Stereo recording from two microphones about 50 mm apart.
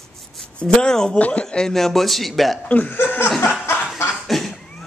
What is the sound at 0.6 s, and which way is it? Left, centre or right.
Speech, centre.